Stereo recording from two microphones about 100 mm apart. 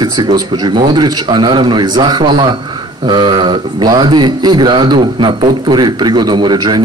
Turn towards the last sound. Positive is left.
turn(degrees=-45)  # may be behind; listen again after turning